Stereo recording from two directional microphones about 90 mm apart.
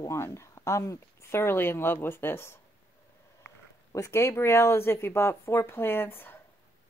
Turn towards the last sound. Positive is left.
turn(degrees=25)  # may be behind; listen again after turning